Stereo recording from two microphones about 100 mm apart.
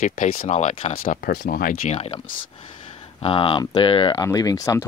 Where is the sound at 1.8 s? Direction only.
90° left.